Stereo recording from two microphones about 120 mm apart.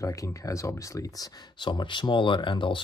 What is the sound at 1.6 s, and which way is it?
Speech, 40° left (ahead or behind).